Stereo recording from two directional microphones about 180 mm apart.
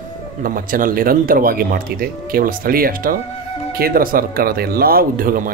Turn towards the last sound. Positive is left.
turn(degrees=-50)  # may be behind; listen again after turning